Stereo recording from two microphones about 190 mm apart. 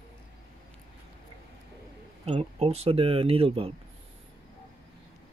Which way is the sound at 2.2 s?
30° right (ahead or behind).